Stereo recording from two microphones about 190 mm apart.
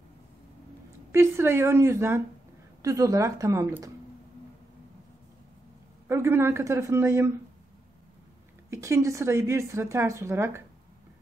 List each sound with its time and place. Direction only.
1.1 s a woman's voice: 15° right (ahead or behind)
6.0 s a woman's voice: 15° right (ahead or behind)
8.6 s a woman's voice: 15° right (ahead or behind)